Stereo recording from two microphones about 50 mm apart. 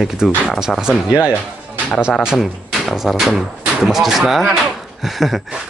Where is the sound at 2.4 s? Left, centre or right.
Centre.